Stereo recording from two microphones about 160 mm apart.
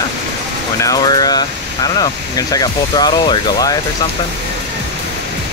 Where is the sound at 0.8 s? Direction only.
25° left (ahead or behind).